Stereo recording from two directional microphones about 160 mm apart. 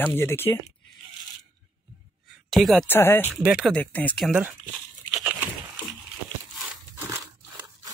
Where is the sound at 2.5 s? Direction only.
Centre (ahead or behind).